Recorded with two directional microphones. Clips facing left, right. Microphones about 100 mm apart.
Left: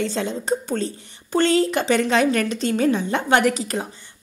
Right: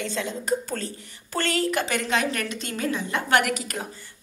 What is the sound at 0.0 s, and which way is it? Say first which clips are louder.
A woman's voice: left 5 dB; 35° left (ahead or behind).